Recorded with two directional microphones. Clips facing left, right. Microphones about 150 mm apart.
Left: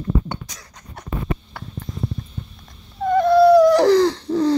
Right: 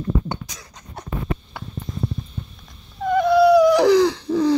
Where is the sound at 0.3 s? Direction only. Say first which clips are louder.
Right 1 dB; 25° right (ahead or behind).